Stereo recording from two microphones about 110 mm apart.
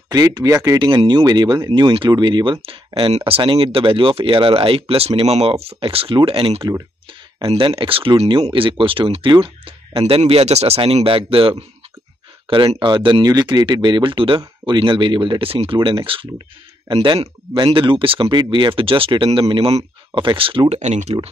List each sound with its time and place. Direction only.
0.1 s speech: 35° right (ahead or behind)
3.0 s speech: 60° right (ahead or behind); by 21.3 s 80° right